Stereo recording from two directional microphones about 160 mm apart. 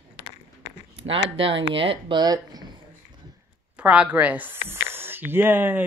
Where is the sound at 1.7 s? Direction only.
35° right (ahead or behind).